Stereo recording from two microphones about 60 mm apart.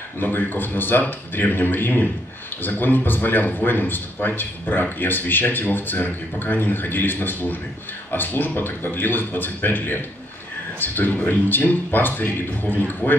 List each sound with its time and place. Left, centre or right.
0.2 s a man's voice: left